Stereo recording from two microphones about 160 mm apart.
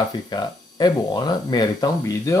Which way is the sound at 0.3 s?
25° left (ahead or behind).